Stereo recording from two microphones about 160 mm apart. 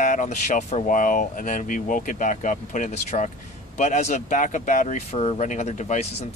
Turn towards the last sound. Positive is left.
turn(degrees=45)  # may be behind; listen again after turning